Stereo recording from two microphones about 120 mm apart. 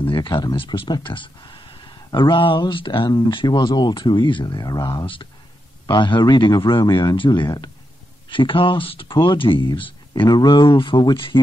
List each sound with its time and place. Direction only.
0.0 s a man's voice: 45° left (ahead or behind)
8.3 s speech: 45° left (ahead or behind)